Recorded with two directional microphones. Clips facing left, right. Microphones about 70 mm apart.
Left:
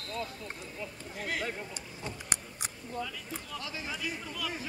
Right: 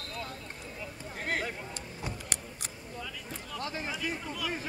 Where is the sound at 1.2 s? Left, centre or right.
Right.